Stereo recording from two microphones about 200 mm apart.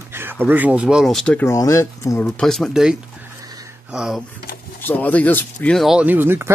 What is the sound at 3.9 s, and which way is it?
Speech, centre (ahead or behind).